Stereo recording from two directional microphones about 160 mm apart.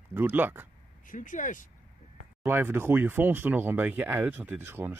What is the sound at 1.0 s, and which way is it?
Speech, 55° left (ahead or behind).